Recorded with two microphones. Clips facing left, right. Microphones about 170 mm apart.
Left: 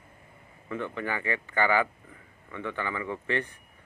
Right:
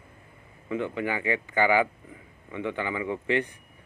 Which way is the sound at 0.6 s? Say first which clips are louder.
Right 4 dB; 15° right (ahead or behind).